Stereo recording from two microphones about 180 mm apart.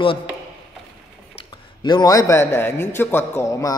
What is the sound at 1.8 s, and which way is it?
A man's voice, 25° left (ahead or behind).